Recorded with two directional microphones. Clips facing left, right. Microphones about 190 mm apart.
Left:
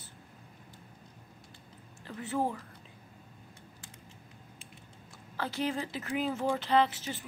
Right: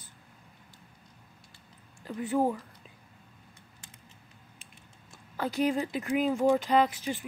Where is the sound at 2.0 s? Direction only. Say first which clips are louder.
Right 5 dB; 15° right (ahead or behind).